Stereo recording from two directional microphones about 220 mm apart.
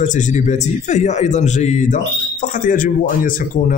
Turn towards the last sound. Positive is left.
turn(degrees=40)  # may be behind; listen again after turning